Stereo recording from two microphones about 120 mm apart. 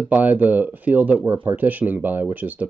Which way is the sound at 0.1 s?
15° right (ahead or behind).